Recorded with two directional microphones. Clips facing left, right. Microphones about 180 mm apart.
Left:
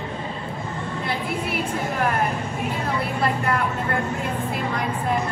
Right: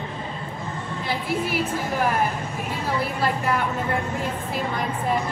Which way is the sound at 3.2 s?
Centre (ahead or behind).